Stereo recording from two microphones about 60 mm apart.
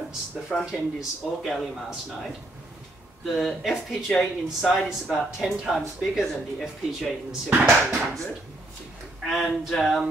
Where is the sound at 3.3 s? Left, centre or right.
Centre.